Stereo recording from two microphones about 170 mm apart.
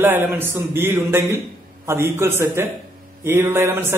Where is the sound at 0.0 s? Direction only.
10° right (ahead or behind).